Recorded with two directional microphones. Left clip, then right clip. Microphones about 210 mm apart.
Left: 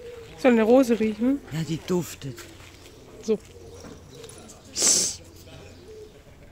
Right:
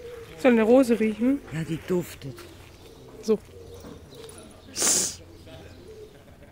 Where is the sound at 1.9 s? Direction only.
50° left (ahead or behind).